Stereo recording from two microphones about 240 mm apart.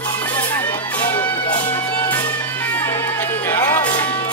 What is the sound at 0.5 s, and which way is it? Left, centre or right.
Music, centre.